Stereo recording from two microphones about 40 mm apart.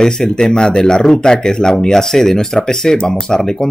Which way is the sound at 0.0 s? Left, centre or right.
Centre.